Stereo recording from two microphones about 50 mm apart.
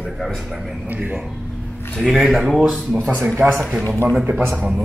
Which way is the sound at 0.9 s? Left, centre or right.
Right.